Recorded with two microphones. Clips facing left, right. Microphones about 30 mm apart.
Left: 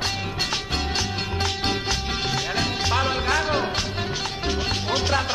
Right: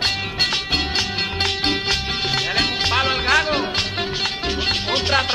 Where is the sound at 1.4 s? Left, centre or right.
Right.